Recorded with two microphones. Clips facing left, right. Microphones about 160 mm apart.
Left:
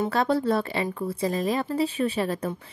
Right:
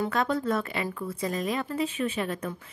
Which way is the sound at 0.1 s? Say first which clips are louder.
Left 4 dB; 30° left (ahead or behind).